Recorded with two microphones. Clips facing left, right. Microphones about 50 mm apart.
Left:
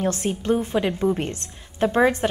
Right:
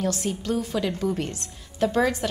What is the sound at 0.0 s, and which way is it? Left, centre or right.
A woman's voice, left.